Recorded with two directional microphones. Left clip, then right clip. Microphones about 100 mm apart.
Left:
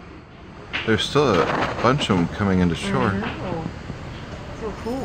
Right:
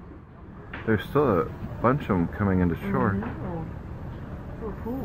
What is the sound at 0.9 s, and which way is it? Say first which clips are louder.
Speech: left 4 dB; 20° left (ahead or behind).